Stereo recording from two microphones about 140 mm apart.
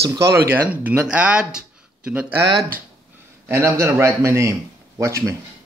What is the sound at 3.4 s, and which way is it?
A man's voice, 20° right (ahead or behind).